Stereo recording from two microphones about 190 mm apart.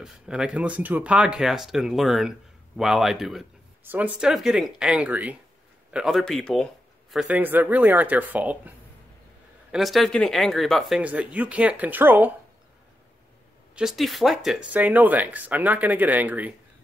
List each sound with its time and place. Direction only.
0.0 s speech: 5° right (ahead or behind)
13.7 s speech: centre (ahead or behind)